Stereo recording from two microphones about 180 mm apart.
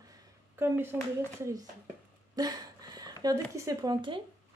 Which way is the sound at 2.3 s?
20° right (ahead or behind).